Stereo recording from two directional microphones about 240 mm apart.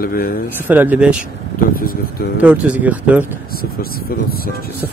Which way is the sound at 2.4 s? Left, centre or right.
Centre.